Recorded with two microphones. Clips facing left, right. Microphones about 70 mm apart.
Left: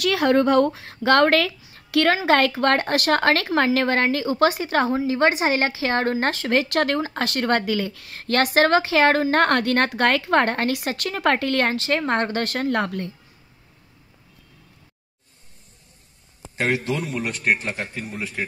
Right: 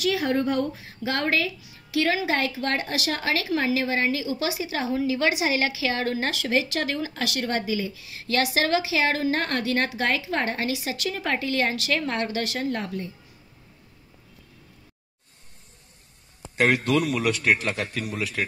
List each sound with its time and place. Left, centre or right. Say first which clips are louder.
0.0 s a woman's voice: left 5 dB; left
1.9 s a woman's voice: left 6 dB; left
4.9 s a woman's voice: left 4 dB; left
11.7 s speech: left 5 dB; left
16.5 s a man's voice: right 2 dB; right